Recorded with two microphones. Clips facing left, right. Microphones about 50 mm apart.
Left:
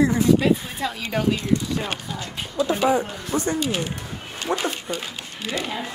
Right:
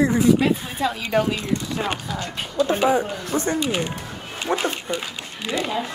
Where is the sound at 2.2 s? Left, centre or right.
Right.